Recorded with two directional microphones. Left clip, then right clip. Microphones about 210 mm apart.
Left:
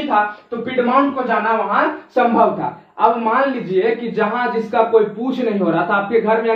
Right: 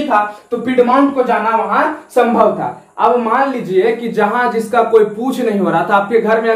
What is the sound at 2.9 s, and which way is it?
A man's voice, 10° right (ahead or behind).